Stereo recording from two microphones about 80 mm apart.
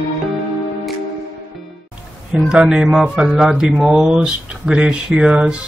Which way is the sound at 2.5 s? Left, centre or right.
Centre.